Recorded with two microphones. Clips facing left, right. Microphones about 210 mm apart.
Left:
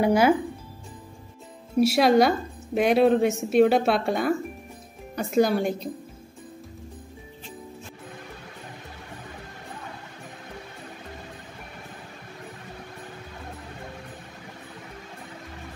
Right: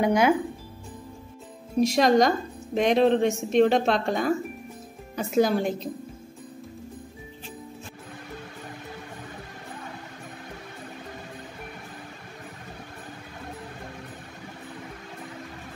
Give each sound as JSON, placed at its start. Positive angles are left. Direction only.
{"t": 0.0, "sound": "a woman's voice", "side_deg": 5}
{"t": 1.8, "sound": "a woman's voice", "side_deg": 5}